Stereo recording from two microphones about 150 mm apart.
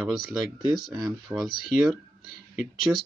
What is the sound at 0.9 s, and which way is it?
Speech, 25° right (ahead or behind).